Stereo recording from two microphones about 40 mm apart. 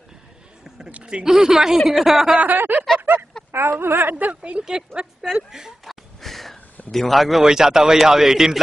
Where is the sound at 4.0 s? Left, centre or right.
Right.